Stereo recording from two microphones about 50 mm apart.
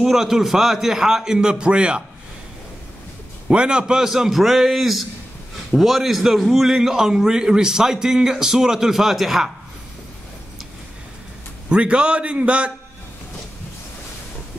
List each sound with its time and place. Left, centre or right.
0.0 s a man's voice: centre
3.4 s a man's voice: centre
11.7 s a man's voice: right